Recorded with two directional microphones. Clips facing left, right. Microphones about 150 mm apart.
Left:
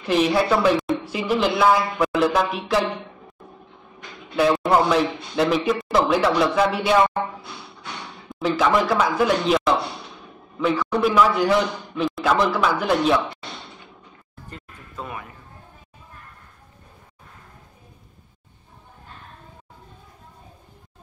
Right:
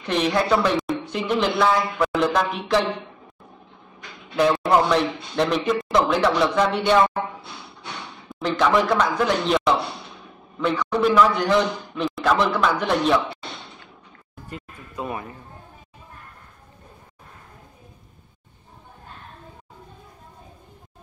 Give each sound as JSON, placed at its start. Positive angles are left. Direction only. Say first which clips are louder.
{"t": 0.0, "sound": "a woman's voice", "louder": "left 2 dB", "side_deg": 5}
{"t": 4.4, "sound": "a woman's voice", "louder": "even", "side_deg": 0}
{"t": 8.3, "sound": "a woman's voice", "louder": "even", "side_deg": 0}
{"t": 15.0, "sound": "speech", "louder": "right 6 dB", "side_deg": -30}